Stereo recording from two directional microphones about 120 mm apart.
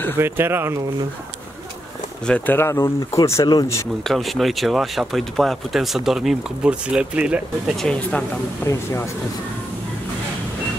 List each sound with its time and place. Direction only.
0.2 s speech: 20° right (ahead or behind)
2.2 s speech: 15° left (ahead or behind)
4.0 s speech: centre (ahead or behind)
7.7 s speech: 5° left (ahead or behind)
8.6 s speech: 25° left (ahead or behind)